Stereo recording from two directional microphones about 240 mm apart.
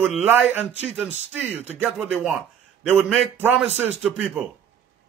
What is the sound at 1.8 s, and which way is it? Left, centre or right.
A man's voice, centre.